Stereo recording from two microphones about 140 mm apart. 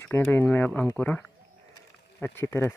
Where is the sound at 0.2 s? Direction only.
10° left (ahead or behind).